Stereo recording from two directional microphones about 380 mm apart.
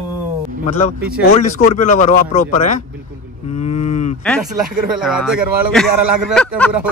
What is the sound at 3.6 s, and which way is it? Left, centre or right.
Cattle, centre.